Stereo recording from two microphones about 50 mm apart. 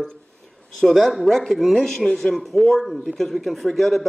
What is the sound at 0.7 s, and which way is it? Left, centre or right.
A man's voice, centre.